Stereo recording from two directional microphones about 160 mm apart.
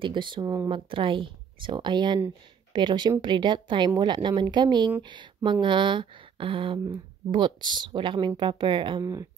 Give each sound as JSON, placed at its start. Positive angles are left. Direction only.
{"t": 0.0, "sound": "speech", "side_deg": -30}